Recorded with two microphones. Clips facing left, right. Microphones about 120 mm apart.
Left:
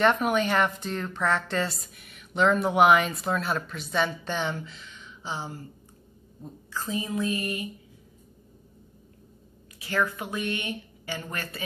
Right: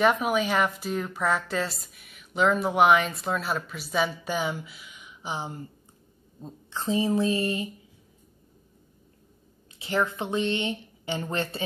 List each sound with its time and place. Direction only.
0.0 s a woman's voice: 5° right (ahead or behind); by 7.7 s 30° right (ahead or behind)
9.8 s speech: 25° right (ahead or behind)